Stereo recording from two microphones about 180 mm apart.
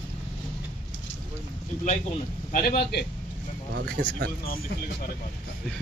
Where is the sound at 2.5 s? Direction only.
50° left (ahead or behind).